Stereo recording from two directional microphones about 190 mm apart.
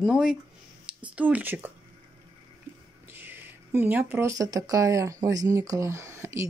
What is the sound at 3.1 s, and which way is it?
Speech, 10° right (ahead or behind).